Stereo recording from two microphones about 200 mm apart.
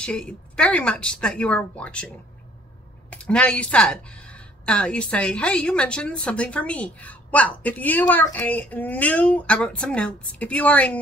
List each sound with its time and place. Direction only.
0.0 s speech: 5° left (ahead or behind)
3.1 s a woman's voice: 5° left (ahead or behind)